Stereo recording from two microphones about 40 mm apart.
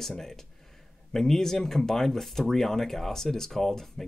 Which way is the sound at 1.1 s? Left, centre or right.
Centre.